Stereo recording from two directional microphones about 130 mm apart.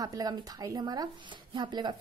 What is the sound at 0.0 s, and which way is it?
A woman's voice, 30° right (ahead or behind).